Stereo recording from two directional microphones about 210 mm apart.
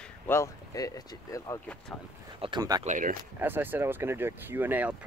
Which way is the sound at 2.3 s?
20° right (ahead or behind).